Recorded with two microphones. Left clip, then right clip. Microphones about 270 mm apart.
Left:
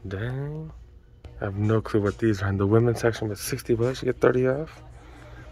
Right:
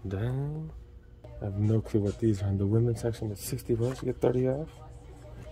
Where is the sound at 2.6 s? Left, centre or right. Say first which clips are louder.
Left 9 dB; left.